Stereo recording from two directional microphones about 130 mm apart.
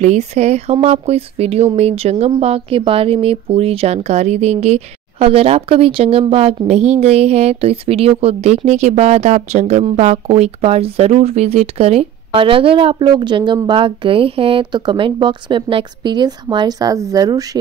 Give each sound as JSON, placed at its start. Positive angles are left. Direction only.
{"t": 0.0, "sound": "speech", "side_deg": -60}